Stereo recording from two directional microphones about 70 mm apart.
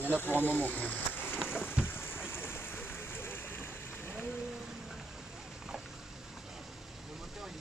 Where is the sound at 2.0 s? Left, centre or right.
Left.